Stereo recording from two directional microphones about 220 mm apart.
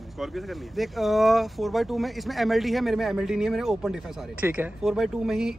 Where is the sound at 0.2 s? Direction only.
Centre (ahead or behind).